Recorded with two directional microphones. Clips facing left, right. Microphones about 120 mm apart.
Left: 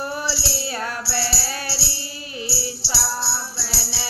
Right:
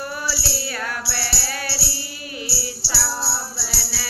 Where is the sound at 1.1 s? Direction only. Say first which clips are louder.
Left 3 dB; 25° left (ahead or behind).